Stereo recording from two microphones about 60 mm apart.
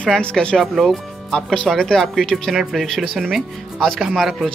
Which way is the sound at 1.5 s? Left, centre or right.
Centre.